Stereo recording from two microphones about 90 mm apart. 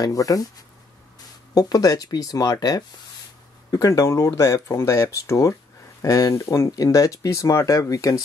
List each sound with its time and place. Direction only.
0.0 s speech: 40° left (ahead or behind)